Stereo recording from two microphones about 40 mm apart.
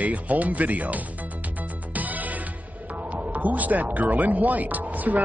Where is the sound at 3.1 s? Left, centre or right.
Right.